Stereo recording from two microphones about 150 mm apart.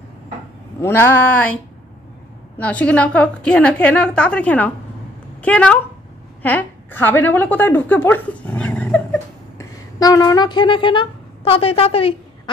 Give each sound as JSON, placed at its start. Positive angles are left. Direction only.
{"t": 0.7, "sound": "a woman's voice", "side_deg": 15}
{"t": 9.6, "sound": "speech", "side_deg": 25}